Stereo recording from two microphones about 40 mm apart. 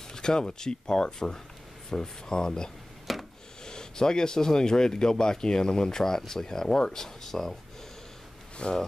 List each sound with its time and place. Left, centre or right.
0.1 s speech: centre
3.1 s a sound: centre
3.6 s speech: centre
8.6 s speech: left